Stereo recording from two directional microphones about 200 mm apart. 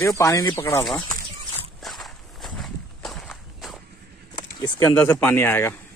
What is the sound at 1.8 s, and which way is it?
Walk, centre (ahead or behind).